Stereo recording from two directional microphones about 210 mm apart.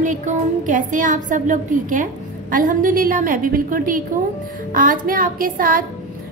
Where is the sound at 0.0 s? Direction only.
35° right (ahead or behind).